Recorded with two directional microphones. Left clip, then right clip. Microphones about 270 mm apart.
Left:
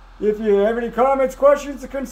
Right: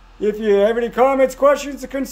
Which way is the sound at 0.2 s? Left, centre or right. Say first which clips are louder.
Right 1 dB; centre.